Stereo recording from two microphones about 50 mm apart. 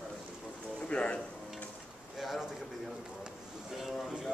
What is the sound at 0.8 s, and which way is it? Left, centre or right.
Speech, left.